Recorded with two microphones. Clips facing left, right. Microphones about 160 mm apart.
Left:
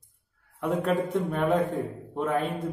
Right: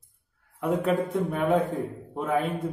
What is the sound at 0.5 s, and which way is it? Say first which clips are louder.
A man's voice: right 1 dB; centre (ahead or behind).